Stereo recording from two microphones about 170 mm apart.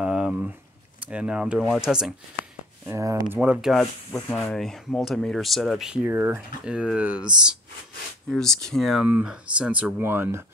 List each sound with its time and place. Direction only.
0.0 s a sound: 5° right (ahead or behind)
1.0 s speech: 5° right (ahead or behind)
2.9 s speech: 20° right (ahead or behind)
3.3 s speech: 5° right (ahead or behind)
4.1 s speech: 10° left (ahead or behind)
6.0 s speech: 15° right (ahead or behind)